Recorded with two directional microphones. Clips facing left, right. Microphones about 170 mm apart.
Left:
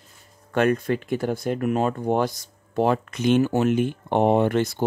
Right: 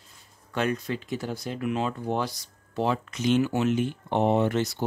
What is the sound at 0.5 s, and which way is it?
Speech, 55° left (ahead or behind).